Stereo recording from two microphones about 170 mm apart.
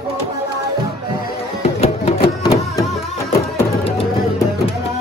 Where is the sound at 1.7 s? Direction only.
35° left (ahead or behind).